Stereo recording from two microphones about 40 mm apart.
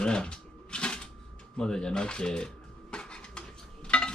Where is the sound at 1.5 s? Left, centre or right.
Centre.